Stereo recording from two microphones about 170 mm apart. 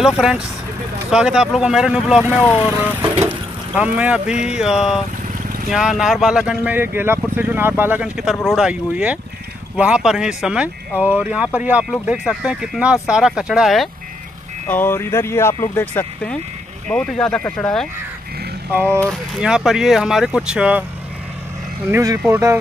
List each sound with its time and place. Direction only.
0.0 s speech: 5° right (ahead or behind)
3.0 s vehicle: 10° right (ahead or behind)
4.6 s speech: 5° right (ahead or behind)
14.7 s speech: 10° left (ahead or behind)
18.7 s speech: 10° right (ahead or behind)
21.9 s speech: 20° right (ahead or behind)